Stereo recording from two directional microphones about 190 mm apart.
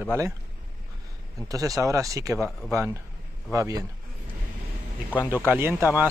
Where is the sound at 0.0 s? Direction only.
10° right (ahead or behind).